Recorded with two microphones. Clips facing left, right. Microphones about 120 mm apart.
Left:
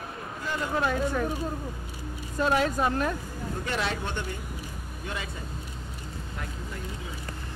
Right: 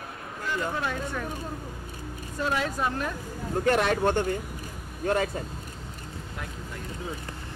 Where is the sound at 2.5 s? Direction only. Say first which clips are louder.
Left 3 dB; 45° left (ahead or behind).